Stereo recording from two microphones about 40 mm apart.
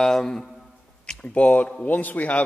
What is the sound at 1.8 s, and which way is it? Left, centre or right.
Speech, left.